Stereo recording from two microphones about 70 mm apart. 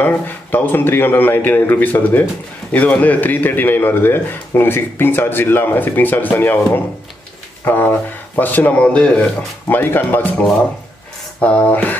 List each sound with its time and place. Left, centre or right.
0.0 s a man's voice: left
9.7 s a man's voice: left